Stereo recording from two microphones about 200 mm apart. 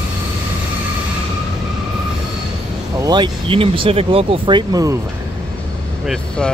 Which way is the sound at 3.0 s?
20° right (ahead or behind).